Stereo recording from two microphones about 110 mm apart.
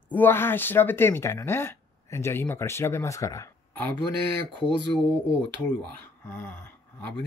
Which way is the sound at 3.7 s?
15° left (ahead or behind).